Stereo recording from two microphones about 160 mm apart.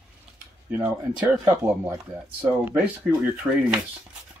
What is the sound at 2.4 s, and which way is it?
Speech, 10° right (ahead or behind).